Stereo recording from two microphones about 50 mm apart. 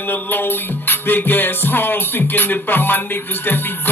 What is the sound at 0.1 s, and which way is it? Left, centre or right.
Speech, left.